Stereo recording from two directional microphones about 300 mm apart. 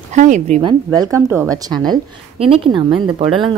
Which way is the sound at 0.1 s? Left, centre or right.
Right.